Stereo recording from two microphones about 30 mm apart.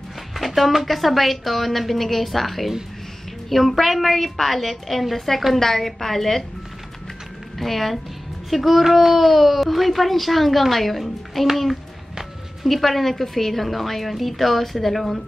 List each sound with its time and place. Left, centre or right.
0.4 s a child's voice: centre
7.5 s a child's voice: centre
12.6 s a child's voice: centre